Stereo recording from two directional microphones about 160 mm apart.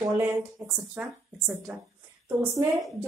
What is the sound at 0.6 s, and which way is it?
A woman's voice, 10° right (ahead or behind).